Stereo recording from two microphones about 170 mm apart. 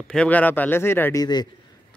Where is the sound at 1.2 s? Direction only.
25° left (ahead or behind).